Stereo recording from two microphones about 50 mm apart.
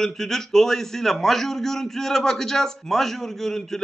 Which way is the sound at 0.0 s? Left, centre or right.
Centre.